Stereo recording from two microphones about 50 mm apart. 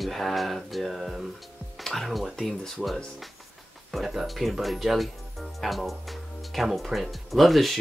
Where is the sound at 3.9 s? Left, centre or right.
Centre.